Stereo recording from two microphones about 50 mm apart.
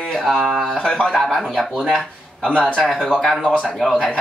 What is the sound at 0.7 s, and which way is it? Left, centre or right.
Speech, centre.